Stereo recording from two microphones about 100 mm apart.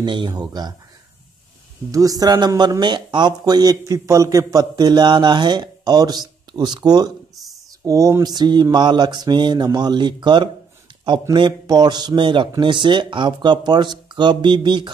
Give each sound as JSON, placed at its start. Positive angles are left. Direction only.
{"t": 0.0, "sound": "speech", "side_deg": -55}
{"t": 0.3, "sound": "speech", "side_deg": -45}
{"t": 1.9, "sound": "speech", "side_deg": -35}
{"t": 7.8, "sound": "a sound", "side_deg": -35}
{"t": 8.7, "sound": "speech", "side_deg": -45}